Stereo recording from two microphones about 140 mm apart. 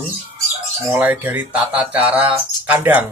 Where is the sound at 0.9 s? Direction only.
10° right (ahead or behind).